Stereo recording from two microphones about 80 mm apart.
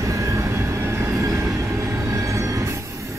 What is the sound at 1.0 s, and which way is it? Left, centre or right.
Train, right.